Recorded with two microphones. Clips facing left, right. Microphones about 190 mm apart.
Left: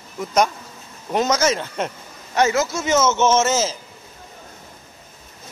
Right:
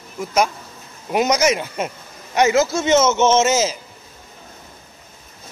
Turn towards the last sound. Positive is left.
turn(degrees=-15)  # may be behind; listen again after turning